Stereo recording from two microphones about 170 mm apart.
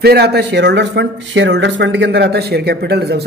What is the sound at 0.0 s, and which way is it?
Speech, 70° right (ahead or behind).